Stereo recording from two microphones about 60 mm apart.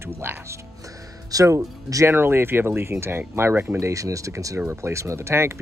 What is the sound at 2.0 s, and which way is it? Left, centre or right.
Speech, right.